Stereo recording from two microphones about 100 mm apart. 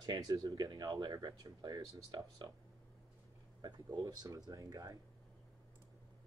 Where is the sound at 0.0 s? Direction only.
40° right (ahead or behind).